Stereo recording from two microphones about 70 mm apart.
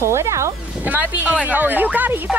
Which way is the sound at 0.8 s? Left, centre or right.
Right.